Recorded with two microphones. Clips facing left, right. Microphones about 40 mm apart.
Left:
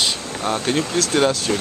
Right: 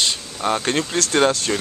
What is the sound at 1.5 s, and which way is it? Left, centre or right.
Speech, centre.